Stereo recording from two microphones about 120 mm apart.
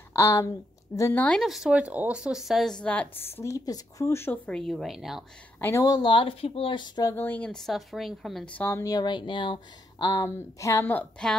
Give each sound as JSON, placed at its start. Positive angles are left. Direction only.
{"t": 0.1, "sound": "a woman's voice", "side_deg": 25}
{"t": 1.2, "sound": "speech", "side_deg": 5}
{"t": 4.5, "sound": "a woman's voice", "side_deg": 5}
{"t": 5.6, "sound": "a woman's voice", "side_deg": 20}
{"t": 5.9, "sound": "speech", "side_deg": 40}
{"t": 7.1, "sound": "a woman's voice", "side_deg": 15}
{"t": 8.5, "sound": "speech", "side_deg": 20}
{"t": 8.8, "sound": "speech", "side_deg": 35}
{"t": 10.2, "sound": "a woman's voice", "side_deg": 25}